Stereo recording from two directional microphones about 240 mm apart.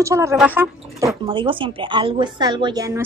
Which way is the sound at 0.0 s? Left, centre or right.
Centre.